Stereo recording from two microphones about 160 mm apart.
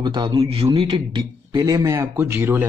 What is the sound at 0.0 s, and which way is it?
Speech, 30° right (ahead or behind).